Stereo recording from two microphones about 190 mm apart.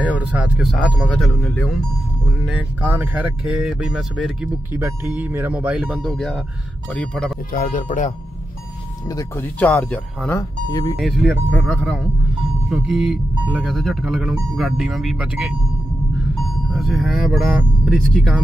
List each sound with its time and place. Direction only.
0.0 s speech: 5° right (ahead or behind)
2.4 s speech: 5° right (ahead or behind)
7.5 s speech: 45° left (ahead or behind)
9.1 s speech: 15° left (ahead or behind); by 15.5 s 5° right (ahead or behind)
16.7 s speech: centre (ahead or behind)